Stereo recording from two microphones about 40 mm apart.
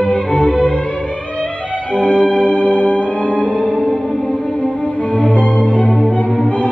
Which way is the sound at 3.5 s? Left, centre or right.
Right.